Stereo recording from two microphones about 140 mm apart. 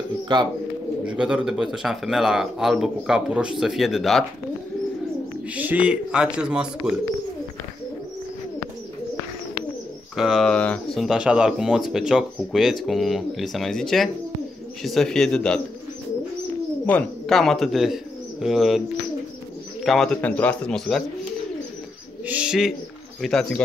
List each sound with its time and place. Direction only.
0.3 s speech: 30° right (ahead or behind)
1.0 s speech: 5° right (ahead or behind)
5.5 s a man's voice: 10° right (ahead or behind)
10.1 s speech: centre (ahead or behind)
11.1 s speech: 5° right (ahead or behind)
16.8 s speech: 5° left (ahead or behind)
19.8 s speech: centre (ahead or behind)
22.2 s bird: 10° right (ahead or behind)
23.2 s speech: 5° left (ahead or behind)